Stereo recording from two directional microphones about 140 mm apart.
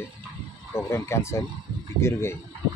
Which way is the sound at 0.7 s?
20° left (ahead or behind).